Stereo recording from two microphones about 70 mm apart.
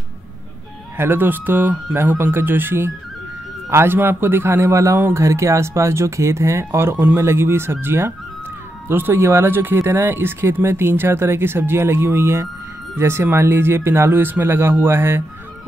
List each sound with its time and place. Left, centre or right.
0.9 s speech: right